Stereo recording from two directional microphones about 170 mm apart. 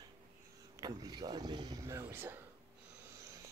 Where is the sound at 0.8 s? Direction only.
25° right (ahead or behind).